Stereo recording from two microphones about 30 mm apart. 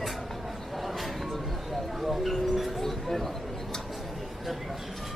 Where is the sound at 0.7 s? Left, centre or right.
Centre.